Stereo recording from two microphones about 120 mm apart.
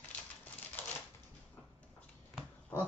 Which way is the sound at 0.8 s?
15° left (ahead or behind).